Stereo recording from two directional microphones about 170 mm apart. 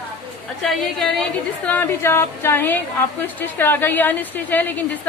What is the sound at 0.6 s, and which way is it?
A woman's voice, 5° left (ahead or behind).